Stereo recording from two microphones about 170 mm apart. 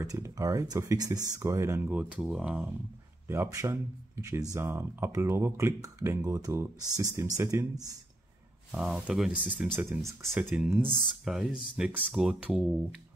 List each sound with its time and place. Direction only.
0.0 s speech: 20° right (ahead or behind); by 2.7 s 5° right (ahead or behind)
3.3 s speech: 15° right (ahead or behind)
8.7 s speech: 5° right (ahead or behind)
10.0 s speech: 15° right (ahead or behind)
10.4 s speech: 5° right (ahead or behind)